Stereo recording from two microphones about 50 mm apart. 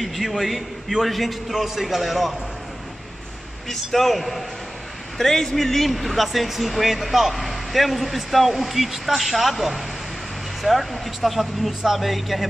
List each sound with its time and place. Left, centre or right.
0.0 s speech: centre
3.6 s speech: centre